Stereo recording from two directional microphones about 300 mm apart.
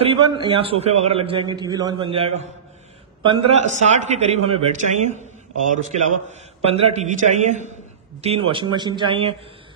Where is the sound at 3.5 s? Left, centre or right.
Right.